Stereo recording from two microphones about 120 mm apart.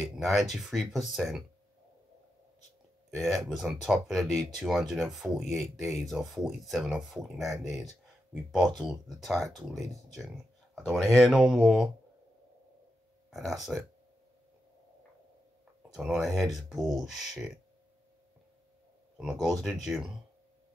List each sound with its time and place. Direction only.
0.0 s speech: centre (ahead or behind)
3.1 s speech: centre (ahead or behind)
8.5 s speech: centre (ahead or behind)
10.7 s a sound: 5° right (ahead or behind)
11.1 s speech: 5° right (ahead or behind)
13.3 s speech: centre (ahead or behind)
15.9 s speech: 5° right (ahead or behind)
19.1 s speech: 5° right (ahead or behind)